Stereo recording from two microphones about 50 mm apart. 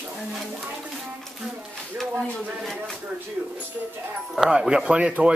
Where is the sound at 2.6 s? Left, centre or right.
Centre.